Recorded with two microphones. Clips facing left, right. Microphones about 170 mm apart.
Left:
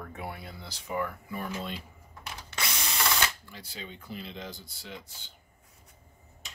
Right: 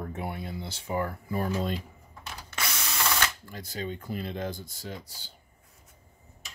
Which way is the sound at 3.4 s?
45° right (ahead or behind).